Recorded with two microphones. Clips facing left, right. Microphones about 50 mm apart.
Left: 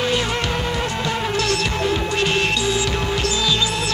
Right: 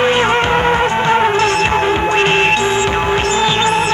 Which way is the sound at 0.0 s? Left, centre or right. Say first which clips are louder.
Right 9 dB; right.